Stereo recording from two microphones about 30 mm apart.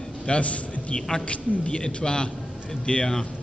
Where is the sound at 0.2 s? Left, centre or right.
Left.